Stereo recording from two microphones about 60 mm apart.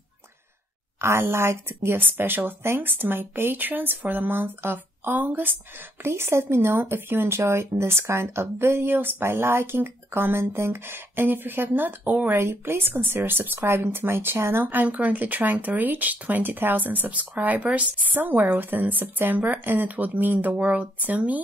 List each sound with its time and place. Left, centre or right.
1.2 s speech: right
6.0 s speech: right
12.4 s speech: right
14.6 s speech: right